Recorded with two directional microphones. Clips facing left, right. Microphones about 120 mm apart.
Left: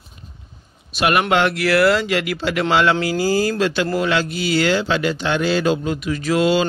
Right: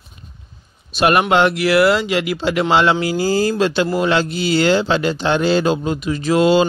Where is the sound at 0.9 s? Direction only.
30° right (ahead or behind).